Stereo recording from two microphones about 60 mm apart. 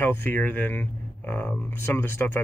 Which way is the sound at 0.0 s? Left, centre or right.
Left.